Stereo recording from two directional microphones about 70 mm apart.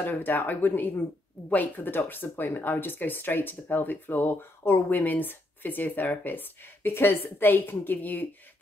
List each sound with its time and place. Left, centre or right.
0.0 s speech: left